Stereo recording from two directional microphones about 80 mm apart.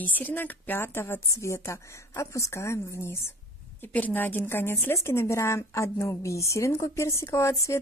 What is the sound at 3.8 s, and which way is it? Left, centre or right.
Speech, left.